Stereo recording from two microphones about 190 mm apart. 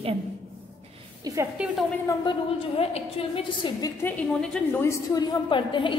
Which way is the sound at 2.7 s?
30° left (ahead or behind).